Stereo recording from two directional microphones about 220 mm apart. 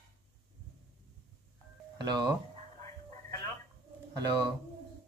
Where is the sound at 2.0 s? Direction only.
20° right (ahead or behind).